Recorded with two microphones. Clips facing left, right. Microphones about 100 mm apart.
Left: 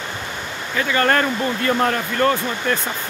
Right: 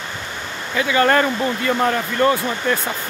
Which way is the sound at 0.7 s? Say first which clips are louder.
Right 2 dB; 15° right (ahead or behind).